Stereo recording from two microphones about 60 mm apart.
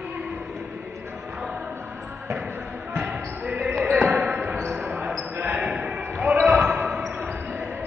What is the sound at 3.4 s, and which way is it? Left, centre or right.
Basketball bounce, centre.